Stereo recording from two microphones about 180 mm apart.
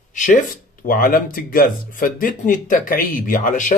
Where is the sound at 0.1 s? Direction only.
45° left (ahead or behind).